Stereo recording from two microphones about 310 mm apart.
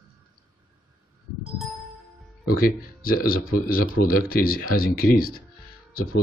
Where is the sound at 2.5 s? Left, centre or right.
Left.